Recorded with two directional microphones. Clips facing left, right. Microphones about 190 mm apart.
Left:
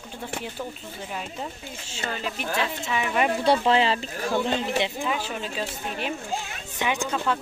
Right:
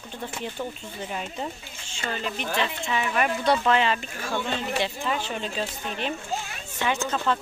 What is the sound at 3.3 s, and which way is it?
Speech, 30° left (ahead or behind).